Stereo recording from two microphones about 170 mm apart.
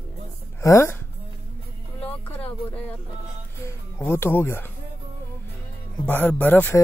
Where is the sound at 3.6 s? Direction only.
15° left (ahead or behind).